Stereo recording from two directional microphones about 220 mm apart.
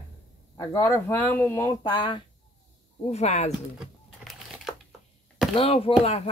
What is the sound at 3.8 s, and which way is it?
Crumpling, centre (ahead or behind).